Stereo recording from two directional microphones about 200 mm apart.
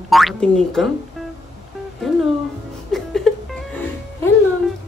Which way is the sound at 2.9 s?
Centre (ahead or behind).